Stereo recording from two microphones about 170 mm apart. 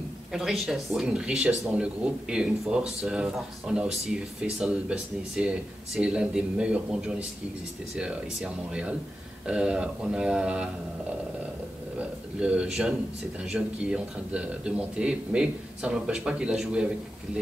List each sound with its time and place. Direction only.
0.3 s speech: centre (ahead or behind)
12.4 s speech: 5° right (ahead or behind)